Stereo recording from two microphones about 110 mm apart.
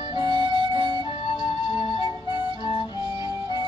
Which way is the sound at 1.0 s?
50° left (ahead or behind).